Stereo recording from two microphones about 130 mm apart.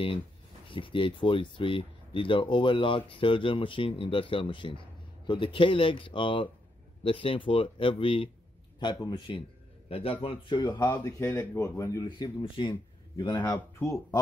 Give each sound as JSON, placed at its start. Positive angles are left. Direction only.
{"t": 0.7, "sound": "speech", "side_deg": 40}
{"t": 9.8, "sound": "speech", "side_deg": 45}
{"t": 13.6, "sound": "speech", "side_deg": 20}